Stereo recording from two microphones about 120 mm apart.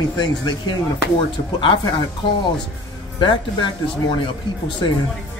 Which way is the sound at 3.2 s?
40° left (ahead or behind).